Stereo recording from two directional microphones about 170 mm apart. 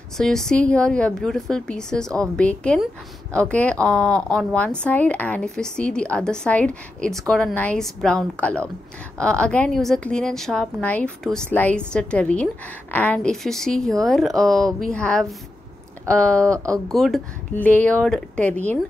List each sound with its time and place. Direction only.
0.2 s speech: 5° left (ahead or behind)
16.5 s speech: 20° right (ahead or behind)
16.9 s speech: centre (ahead or behind)